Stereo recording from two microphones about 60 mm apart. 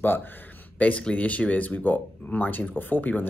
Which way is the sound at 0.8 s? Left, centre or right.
Left.